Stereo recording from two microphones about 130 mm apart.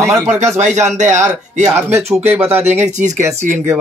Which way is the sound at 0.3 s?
65° right (ahead or behind).